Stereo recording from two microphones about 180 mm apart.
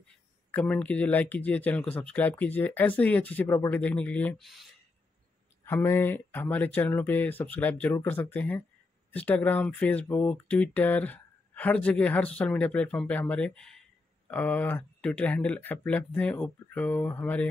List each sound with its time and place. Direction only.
0.5 s speech: 5° left (ahead or behind)
5.7 s speech: 15° left (ahead or behind)